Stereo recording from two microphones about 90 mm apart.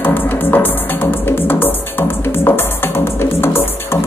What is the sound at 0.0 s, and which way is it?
Music, 20° left (ahead or behind).